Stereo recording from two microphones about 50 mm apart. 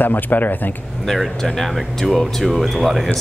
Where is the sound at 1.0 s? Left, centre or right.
Centre.